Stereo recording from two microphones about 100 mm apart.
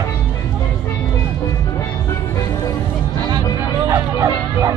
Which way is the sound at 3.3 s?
40° right (ahead or behind).